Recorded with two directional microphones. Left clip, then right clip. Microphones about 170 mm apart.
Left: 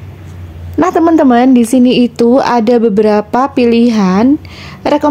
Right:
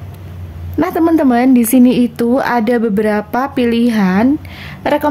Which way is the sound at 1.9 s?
10° left (ahead or behind).